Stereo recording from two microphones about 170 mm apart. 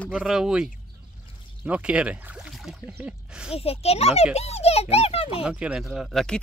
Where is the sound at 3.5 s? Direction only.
35° left (ahead or behind).